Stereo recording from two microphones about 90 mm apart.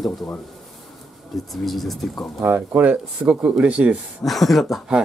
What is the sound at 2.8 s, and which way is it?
Speech, 15° right (ahead or behind).